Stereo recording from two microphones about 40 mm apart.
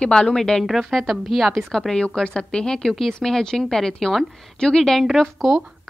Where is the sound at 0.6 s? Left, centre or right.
Centre.